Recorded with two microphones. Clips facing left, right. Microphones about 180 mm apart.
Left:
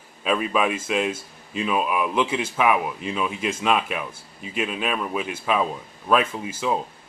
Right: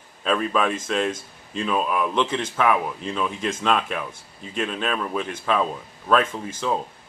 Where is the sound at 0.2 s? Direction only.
10° left (ahead or behind).